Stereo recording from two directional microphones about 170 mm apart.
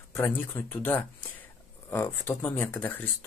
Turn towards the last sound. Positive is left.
turn(degrees=10)  # may be behind; listen again after turning